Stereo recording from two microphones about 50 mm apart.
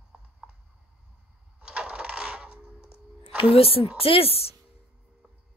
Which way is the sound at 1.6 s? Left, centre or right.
Centre.